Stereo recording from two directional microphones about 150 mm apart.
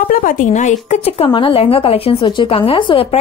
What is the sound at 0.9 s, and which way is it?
A woman's voice, 40° left (ahead or behind).